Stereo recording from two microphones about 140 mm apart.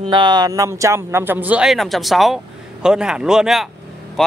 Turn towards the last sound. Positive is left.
turn(degrees=0)  # may be behind; listen again after turning